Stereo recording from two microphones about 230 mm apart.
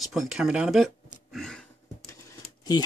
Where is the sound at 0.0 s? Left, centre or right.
Centre.